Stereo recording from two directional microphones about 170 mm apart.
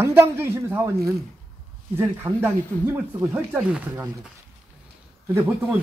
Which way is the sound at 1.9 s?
15° right (ahead or behind).